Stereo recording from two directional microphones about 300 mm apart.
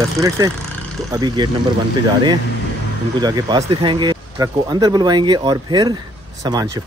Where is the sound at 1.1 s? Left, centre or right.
Centre.